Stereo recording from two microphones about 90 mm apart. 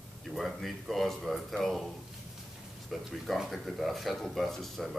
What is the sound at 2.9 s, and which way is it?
Speech, centre (ahead or behind).